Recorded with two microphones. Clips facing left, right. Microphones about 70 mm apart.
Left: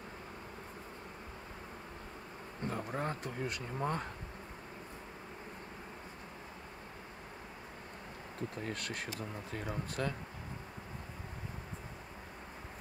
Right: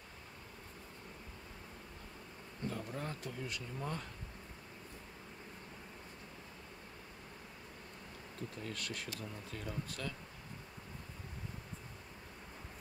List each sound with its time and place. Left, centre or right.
2.6 s speech: left
8.4 s speech: left